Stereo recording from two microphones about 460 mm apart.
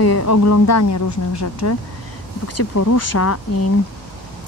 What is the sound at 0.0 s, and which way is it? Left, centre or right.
Speech, left.